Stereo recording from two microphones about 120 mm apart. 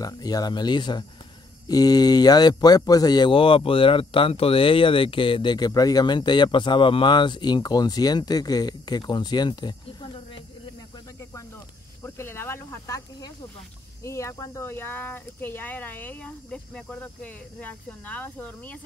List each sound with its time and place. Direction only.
0.0 s speech: 30° left (ahead or behind)
11.1 s snake: 20° left (ahead or behind)
14.0 s speech: 25° left (ahead or behind)